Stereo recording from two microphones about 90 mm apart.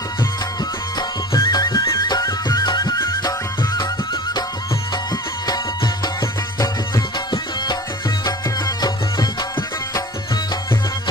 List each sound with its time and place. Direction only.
0.9 s music: 50° left (ahead or behind)
8.3 s music: 45° left (ahead or behind)